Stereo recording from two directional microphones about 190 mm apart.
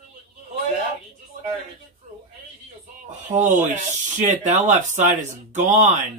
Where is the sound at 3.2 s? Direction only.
40° right (ahead or behind).